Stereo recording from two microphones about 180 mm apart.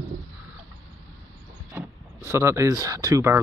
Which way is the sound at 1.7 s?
15° right (ahead or behind).